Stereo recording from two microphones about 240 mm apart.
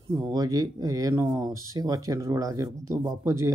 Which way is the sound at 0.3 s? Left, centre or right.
Centre.